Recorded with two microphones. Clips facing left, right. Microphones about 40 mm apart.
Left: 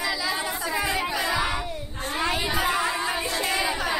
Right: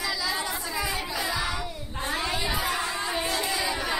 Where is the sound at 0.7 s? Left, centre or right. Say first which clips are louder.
Left 6 dB; left.